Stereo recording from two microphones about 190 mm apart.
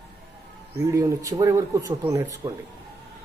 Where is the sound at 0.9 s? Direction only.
15° right (ahead or behind).